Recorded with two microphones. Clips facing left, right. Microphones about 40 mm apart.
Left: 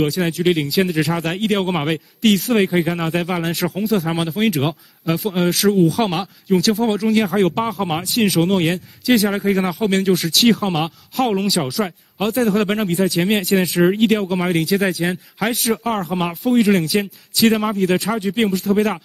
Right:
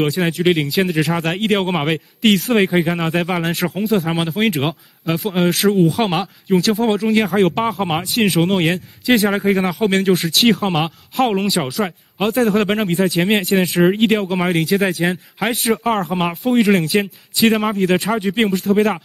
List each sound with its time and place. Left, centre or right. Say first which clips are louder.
0.0 s speech: right 1 dB; centre
15.7 s speech: right 3 dB; centre